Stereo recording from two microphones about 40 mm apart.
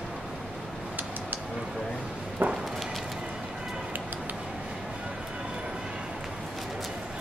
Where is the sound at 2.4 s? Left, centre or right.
Right.